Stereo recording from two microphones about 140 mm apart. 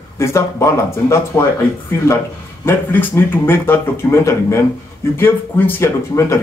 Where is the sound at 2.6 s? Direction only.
15° left (ahead or behind).